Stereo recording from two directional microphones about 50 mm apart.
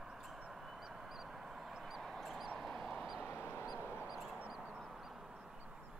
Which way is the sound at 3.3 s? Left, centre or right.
Left.